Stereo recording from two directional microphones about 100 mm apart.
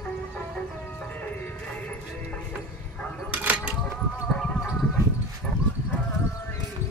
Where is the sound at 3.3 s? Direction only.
15° right (ahead or behind).